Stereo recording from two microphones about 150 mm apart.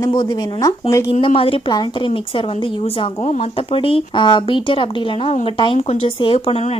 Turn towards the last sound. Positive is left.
turn(degrees=40)  # may be behind; listen again after turning